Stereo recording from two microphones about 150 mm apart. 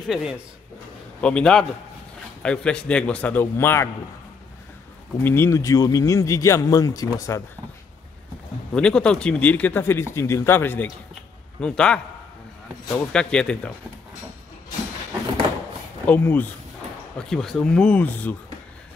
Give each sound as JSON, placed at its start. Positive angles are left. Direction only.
{"t": 0.0, "sound": "a man's voice", "side_deg": -5}
{"t": 5.2, "sound": "speech", "side_deg": 15}
{"t": 8.7, "sound": "a man's voice", "side_deg": 5}
{"t": 13.1, "sound": "speech", "side_deg": 5}
{"t": 16.1, "sound": "a man's voice", "side_deg": 10}